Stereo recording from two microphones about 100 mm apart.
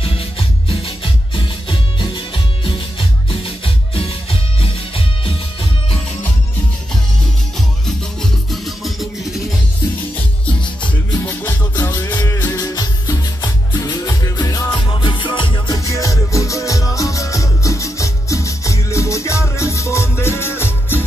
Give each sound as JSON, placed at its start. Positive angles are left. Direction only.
{"t": 0.0, "sound": "music", "side_deg": 70}
{"t": 7.8, "sound": "music", "side_deg": 5}
{"t": 10.6, "sound": "music", "side_deg": 50}
{"t": 11.2, "sound": "music", "side_deg": 20}
{"t": 14.8, "sound": "music", "side_deg": 55}
{"t": 15.7, "sound": "music", "side_deg": 35}